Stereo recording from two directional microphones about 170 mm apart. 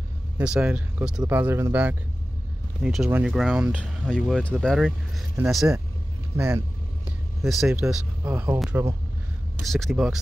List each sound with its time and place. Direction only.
0.4 s speech: 5° right (ahead or behind)
6.3 s speech: 15° right (ahead or behind)
7.1 s speech: centre (ahead or behind)
8.2 s speech: 15° right (ahead or behind)
9.6 s speech: centre (ahead or behind)